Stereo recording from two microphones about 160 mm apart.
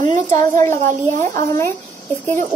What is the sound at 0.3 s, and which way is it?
Speech, 20° left (ahead or behind).